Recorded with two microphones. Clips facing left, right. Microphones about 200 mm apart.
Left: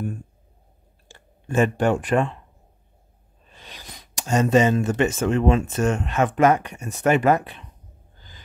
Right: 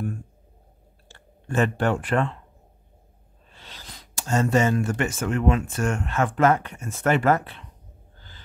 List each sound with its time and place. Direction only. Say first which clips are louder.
1.0 s speech: left 2 dB; 15° left (ahead or behind)
3.4 s speech: left 2 dB; 15° left (ahead or behind)